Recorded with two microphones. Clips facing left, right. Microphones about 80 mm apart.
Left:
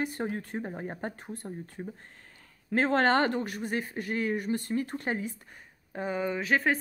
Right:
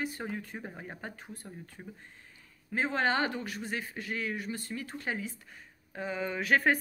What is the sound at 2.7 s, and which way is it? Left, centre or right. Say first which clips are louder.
Speech: left 5 dB; left.